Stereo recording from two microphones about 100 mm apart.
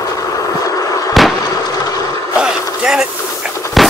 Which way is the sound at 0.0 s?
35° left (ahead or behind).